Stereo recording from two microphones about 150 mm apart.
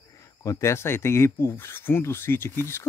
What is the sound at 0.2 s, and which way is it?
Speech, 20° left (ahead or behind).